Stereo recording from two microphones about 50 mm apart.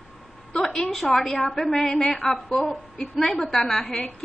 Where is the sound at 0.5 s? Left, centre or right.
Centre.